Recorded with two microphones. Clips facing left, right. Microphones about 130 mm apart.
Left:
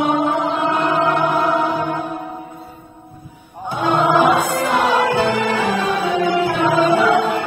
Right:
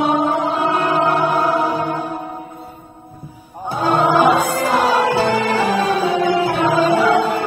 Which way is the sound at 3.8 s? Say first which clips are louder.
Right 1 dB; 35° right (ahead or behind).